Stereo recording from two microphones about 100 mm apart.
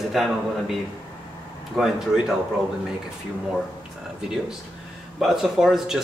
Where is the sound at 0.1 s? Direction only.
Centre (ahead or behind).